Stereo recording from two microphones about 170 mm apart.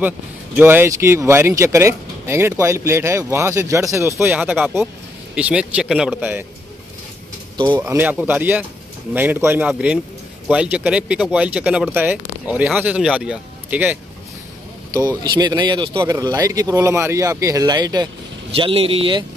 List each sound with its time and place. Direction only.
0.6 s speech: 10° right (ahead or behind)
7.7 s speech: 10° right (ahead or behind)
15.2 s speech: 25° right (ahead or behind)